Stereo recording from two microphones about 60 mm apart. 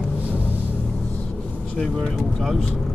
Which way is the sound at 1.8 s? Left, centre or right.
Centre.